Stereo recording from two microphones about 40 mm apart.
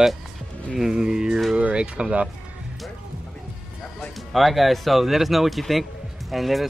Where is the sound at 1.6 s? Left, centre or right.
Right.